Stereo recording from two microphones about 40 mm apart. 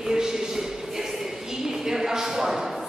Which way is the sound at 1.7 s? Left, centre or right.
Centre.